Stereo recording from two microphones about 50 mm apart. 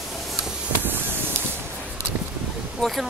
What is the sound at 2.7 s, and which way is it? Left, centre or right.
Speech, centre.